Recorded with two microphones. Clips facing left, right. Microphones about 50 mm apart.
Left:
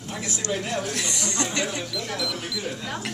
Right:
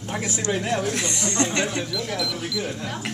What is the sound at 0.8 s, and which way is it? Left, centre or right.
Speech, right.